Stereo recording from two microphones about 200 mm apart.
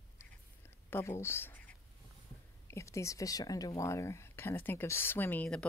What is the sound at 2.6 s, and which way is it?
Speech, 15° left (ahead or behind).